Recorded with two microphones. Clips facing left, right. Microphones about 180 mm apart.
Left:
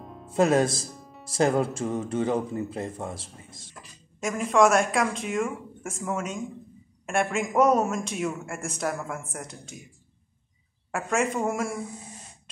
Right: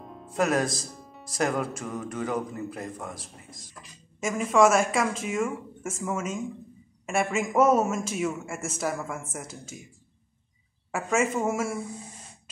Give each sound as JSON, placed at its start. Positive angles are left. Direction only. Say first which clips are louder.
{"t": 0.0, "sound": "music", "louder": "left 1 dB", "side_deg": 0}
{"t": 0.3, "sound": "speech", "louder": "left 4 dB", "side_deg": 25}
{"t": 0.9, "sound": "music", "louder": "even", "side_deg": 0}
{"t": 1.3, "sound": "speech", "louder": "left 4 dB", "side_deg": 30}
{"t": 4.2, "sound": "a man's voice", "louder": "even", "side_deg": 0}
{"t": 10.9, "sound": "a man's voice", "louder": "right 1 dB", "side_deg": 0}